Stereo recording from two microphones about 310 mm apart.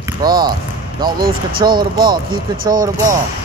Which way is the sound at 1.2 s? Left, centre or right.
Right.